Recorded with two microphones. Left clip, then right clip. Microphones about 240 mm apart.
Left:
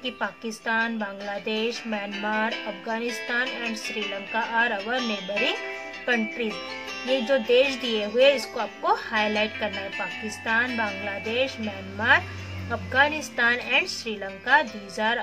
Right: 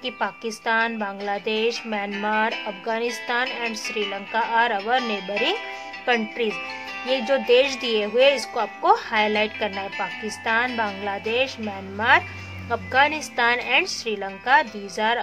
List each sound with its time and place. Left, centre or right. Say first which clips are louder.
0.0 s a woman's voice: right 3 dB; right
12.6 s speech: right 3 dB; right